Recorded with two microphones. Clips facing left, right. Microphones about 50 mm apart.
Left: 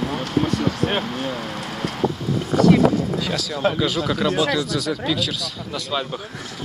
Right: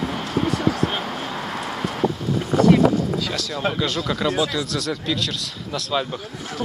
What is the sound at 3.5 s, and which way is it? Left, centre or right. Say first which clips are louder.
Speech: left 3 dB; centre.